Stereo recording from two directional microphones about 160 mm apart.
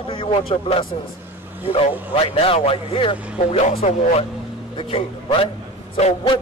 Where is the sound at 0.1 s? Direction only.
35° left (ahead or behind).